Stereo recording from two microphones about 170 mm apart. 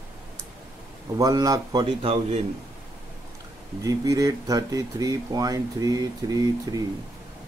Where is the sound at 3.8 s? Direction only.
20° right (ahead or behind).